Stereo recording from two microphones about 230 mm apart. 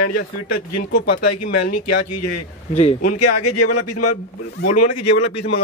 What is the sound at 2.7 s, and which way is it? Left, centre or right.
Speech, left.